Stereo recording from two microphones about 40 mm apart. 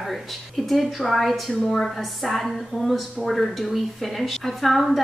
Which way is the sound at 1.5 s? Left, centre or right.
Centre.